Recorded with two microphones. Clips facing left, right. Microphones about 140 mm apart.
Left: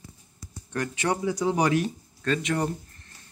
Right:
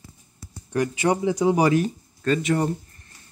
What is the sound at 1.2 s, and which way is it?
Speech, 20° right (ahead or behind).